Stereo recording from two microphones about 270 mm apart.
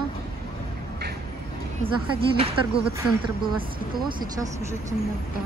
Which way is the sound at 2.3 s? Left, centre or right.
Right.